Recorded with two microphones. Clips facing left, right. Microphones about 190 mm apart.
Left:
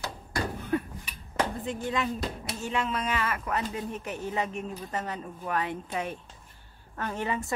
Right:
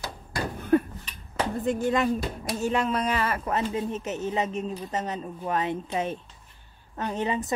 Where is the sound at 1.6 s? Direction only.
45° right (ahead or behind).